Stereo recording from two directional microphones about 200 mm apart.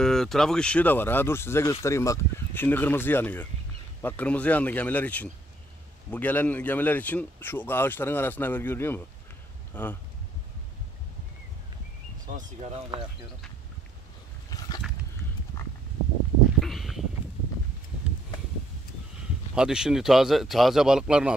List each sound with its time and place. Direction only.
0.0 s speech: centre (ahead or behind)
12.4 s speech: 35° right (ahead or behind)
16.6 s a sound: centre (ahead or behind)
19.5 s speech: 5° right (ahead or behind)